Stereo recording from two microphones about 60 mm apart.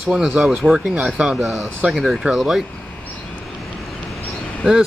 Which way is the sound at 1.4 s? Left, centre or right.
Centre.